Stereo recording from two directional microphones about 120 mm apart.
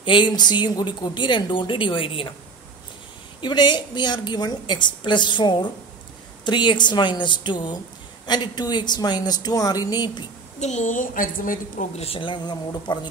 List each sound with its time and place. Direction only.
0.0 s speech: 40° left (ahead or behind)
3.3 s speech: 40° left (ahead or behind)
10.6 s a woman's voice: 75° left (ahead or behind)
11.8 s a woman's voice: 60° left (ahead or behind); by 13.1 s 35° left (ahead or behind)